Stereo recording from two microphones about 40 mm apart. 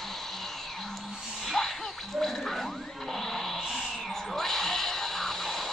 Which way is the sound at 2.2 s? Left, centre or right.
Centre.